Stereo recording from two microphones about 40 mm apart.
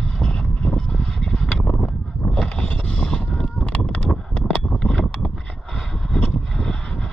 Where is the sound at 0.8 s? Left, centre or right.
Centre.